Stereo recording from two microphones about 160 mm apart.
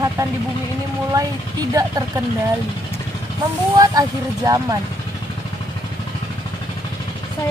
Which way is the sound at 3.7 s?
20° right (ahead or behind).